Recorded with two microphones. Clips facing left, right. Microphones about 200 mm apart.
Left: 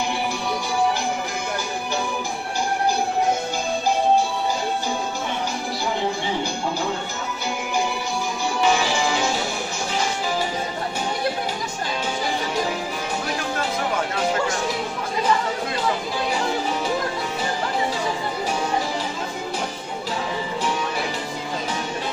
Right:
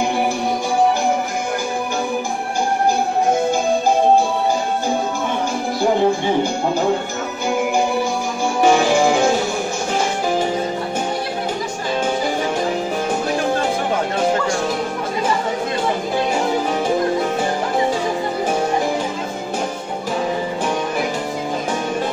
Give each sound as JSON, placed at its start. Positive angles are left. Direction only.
{"t": 8.5, "sound": "music", "side_deg": -50}